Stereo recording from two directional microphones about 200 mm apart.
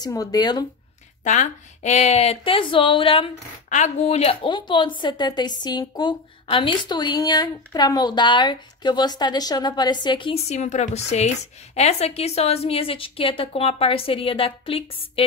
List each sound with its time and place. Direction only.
0.0 s a woman's voice: 20° left (ahead or behind)
1.2 s a woman's voice: 40° left (ahead or behind)